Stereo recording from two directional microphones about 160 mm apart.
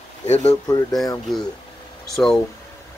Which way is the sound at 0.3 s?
45° left (ahead or behind).